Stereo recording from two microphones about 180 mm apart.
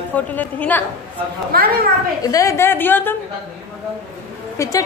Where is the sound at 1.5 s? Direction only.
55° right (ahead or behind).